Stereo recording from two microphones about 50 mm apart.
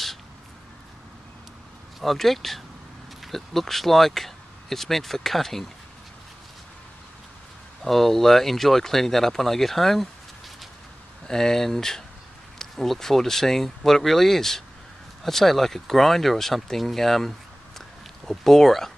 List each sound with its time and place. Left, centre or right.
2.0 s speech: centre
7.8 s speech: centre
11.2 s speech: centre
17.7 s a sound: centre